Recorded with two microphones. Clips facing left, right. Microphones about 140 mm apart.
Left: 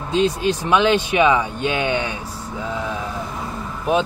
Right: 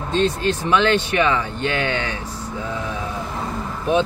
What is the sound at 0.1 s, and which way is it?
Speech, 10° left (ahead or behind).